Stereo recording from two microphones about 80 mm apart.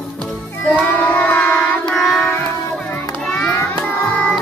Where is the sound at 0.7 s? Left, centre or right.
Centre.